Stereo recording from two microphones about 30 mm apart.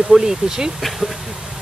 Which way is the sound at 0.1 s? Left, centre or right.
Centre.